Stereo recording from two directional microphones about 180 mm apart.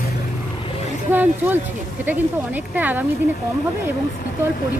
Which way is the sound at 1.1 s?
10° right (ahead or behind).